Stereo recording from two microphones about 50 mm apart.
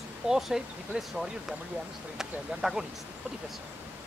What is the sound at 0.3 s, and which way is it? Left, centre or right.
Speech, centre.